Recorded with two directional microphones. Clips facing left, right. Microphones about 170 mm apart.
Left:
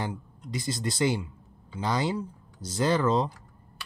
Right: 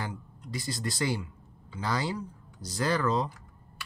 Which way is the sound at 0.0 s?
20° left (ahead or behind).